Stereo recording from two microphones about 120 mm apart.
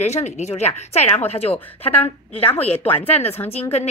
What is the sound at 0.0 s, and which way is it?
A woman's voice, 70° left (ahead or behind).